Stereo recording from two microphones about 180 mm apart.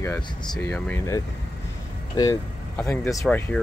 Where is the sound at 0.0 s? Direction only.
15° left (ahead or behind).